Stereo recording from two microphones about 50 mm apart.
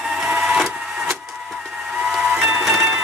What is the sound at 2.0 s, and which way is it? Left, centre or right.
Steam whistle, centre.